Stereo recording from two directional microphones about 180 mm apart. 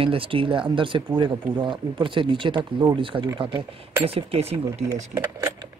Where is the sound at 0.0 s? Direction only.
30° right (ahead or behind).